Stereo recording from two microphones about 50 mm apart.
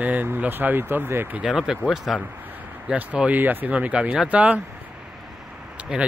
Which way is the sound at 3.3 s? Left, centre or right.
Right.